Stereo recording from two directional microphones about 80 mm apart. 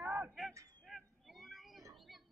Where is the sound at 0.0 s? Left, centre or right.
Right.